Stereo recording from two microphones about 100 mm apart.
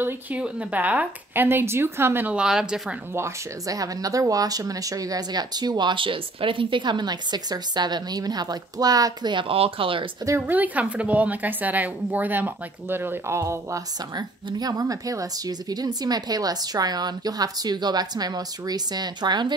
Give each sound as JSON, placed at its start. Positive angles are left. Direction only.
{"t": 0.0, "sound": "speech", "side_deg": -15}
{"t": 2.4, "sound": "a woman's voice", "side_deg": -5}
{"t": 3.2, "sound": "speech", "side_deg": -30}
{"t": 10.4, "sound": "a woman's voice", "side_deg": -15}
{"t": 14.1, "sound": "a woman's voice", "side_deg": -40}